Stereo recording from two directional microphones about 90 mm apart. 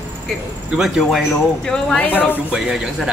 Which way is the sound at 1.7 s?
15° left (ahead or behind).